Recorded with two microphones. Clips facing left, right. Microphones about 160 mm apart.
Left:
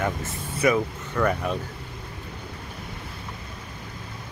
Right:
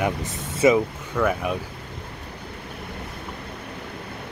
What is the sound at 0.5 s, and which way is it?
Speech, 25° right (ahead or behind).